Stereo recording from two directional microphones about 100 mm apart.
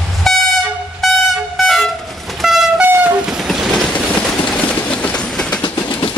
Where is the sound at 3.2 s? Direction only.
5° right (ahead or behind).